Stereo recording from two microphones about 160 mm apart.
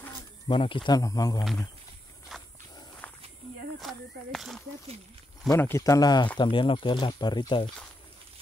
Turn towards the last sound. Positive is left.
turn(degrees=30)  # may be behind; listen again after turning